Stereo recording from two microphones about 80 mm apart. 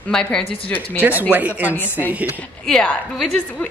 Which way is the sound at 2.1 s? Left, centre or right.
Centre.